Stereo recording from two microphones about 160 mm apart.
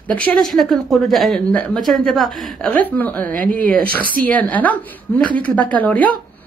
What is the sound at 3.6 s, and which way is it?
Speech, 65° right (ahead or behind).